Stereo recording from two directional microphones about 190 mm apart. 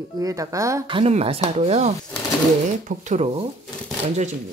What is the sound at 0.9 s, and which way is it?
Speech, 30° right (ahead or behind).